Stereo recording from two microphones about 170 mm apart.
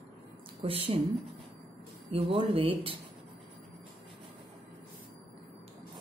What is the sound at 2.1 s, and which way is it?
Speech, 35° right (ahead or behind).